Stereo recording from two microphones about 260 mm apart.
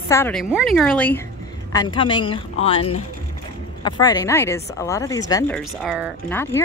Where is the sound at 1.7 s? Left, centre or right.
Centre.